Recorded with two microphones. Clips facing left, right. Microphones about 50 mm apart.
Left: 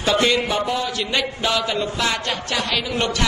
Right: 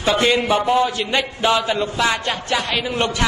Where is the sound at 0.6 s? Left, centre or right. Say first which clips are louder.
Right 6 dB; right.